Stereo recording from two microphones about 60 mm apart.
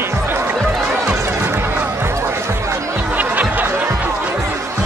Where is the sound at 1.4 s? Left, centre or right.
Right.